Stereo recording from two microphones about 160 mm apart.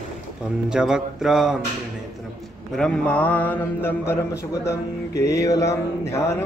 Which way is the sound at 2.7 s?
5° left (ahead or behind).